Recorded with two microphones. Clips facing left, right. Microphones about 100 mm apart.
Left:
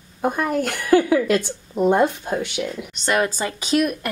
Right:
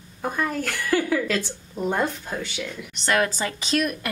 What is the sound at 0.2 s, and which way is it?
Speech, 20° left (ahead or behind).